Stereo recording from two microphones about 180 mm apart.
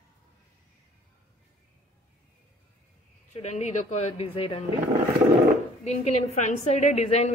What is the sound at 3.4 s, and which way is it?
A woman's voice, 40° left (ahead or behind).